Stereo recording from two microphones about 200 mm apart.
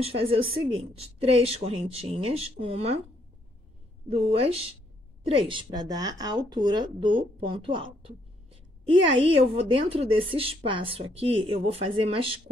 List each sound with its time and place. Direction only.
0.0 s speech: 30° right (ahead or behind)
4.1 s speech: 30° right (ahead or behind)